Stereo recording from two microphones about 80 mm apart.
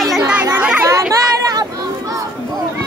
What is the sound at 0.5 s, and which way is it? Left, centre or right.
Chatter, centre.